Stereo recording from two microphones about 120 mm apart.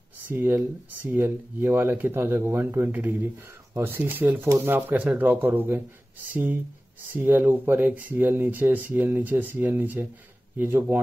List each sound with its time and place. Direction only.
0.3 s speech: 15° right (ahead or behind)